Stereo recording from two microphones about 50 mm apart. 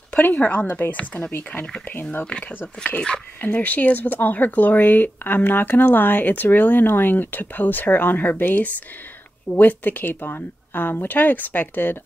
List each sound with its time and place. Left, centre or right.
0.2 s speech: left
0.9 s speech: left
3.3 s speech: left